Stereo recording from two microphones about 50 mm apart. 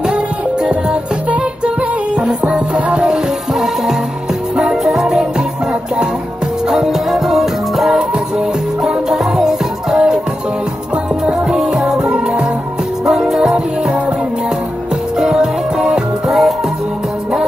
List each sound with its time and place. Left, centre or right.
2.1 s music: centre
4.6 s music: centre
6.7 s music: centre
11.2 s music: centre
15.1 s music: centre